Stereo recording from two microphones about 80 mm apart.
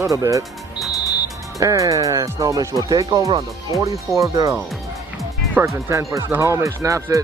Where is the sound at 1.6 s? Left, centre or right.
Right.